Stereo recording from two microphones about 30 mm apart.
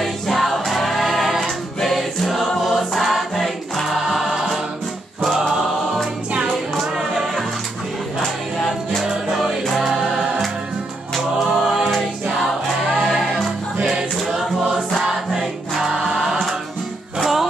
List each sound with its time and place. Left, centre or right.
0.0 s choir: centre
9.3 s music: centre
11.1 s music: centre
15.8 s choir: centre
17.2 s music: centre